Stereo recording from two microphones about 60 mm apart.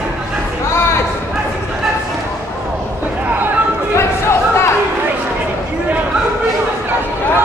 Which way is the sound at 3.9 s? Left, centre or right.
Left.